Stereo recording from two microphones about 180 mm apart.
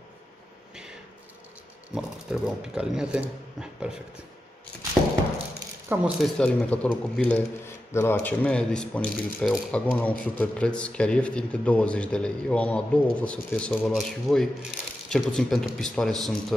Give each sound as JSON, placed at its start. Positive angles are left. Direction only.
{"t": 2.0, "sound": "speech", "side_deg": -5}
{"t": 5.9, "sound": "speech", "side_deg": -10}
{"t": 6.2, "sound": "speech", "side_deg": 5}